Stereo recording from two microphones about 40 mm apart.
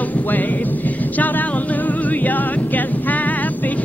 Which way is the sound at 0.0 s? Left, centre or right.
Left.